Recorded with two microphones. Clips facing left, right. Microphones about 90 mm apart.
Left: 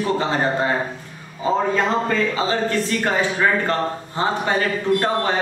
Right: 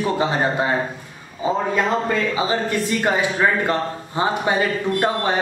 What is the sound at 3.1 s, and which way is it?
Speech, 15° right (ahead or behind).